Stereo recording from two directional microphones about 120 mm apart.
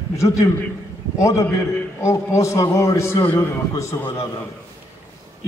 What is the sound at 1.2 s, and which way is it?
A man's voice, 25° left (ahead or behind).